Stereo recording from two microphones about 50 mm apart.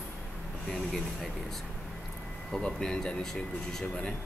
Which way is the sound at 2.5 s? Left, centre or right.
Centre.